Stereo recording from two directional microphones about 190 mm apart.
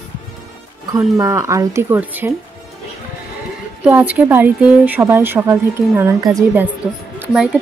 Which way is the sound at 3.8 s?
10° right (ahead or behind).